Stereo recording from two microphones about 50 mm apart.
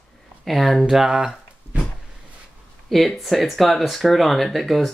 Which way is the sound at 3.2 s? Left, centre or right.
Centre.